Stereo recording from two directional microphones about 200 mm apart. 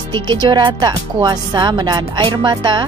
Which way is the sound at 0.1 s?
20° right (ahead or behind).